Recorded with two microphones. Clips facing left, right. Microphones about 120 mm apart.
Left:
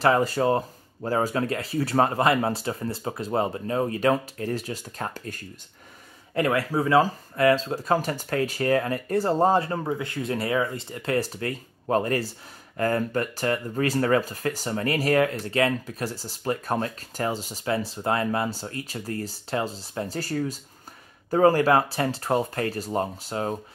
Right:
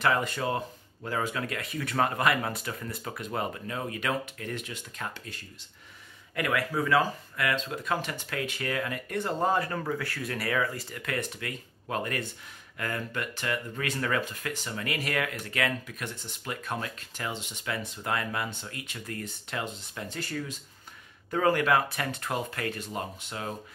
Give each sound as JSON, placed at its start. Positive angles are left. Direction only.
{"t": 0.0, "sound": "speech", "side_deg": 35}
{"t": 6.3, "sound": "speech", "side_deg": 30}